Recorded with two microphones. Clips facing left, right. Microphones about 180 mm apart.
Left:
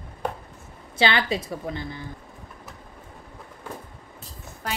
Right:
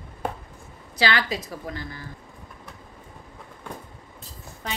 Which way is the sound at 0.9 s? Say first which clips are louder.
Left 2 dB; 25° left (ahead or behind).